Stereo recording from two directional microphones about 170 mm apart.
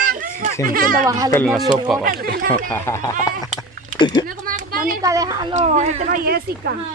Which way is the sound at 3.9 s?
25° left (ahead or behind).